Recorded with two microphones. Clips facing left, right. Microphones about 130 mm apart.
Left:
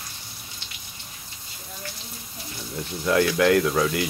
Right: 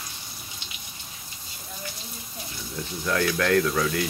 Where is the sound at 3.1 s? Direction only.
15° left (ahead or behind).